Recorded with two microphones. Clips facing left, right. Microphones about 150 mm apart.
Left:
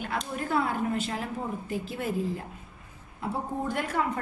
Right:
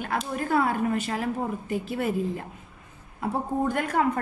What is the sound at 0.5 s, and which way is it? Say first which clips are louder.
A woman's voice: right 3 dB; 60° right (ahead or behind).